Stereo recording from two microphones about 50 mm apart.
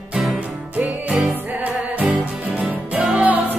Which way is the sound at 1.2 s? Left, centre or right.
Right.